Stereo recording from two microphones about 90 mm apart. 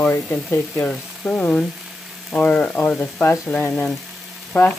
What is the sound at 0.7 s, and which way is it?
Sizzle, 15° left (ahead or behind).